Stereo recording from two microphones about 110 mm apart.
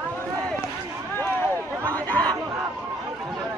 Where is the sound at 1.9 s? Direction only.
15° left (ahead or behind).